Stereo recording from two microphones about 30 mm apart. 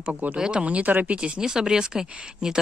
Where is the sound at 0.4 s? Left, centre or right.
Right.